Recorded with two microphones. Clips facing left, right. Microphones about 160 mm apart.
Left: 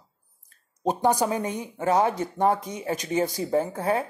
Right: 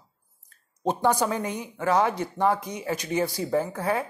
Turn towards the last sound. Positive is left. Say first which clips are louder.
# left 1 dB
turn(degrees=25)  # may be behind; listen again after turning